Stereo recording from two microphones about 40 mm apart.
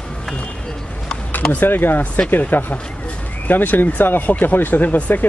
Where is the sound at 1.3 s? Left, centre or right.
Left.